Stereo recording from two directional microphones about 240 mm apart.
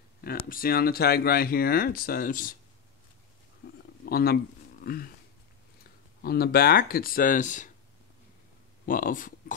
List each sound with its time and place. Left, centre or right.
0.2 s speech: left
3.6 s a sound: left
4.0 s speech: left
4.8 s a sound: left
6.2 s speech: left
8.8 s speech: left